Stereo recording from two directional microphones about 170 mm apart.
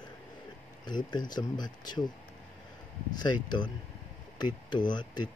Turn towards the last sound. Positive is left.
turn(degrees=25)  # may be behind; listen again after turning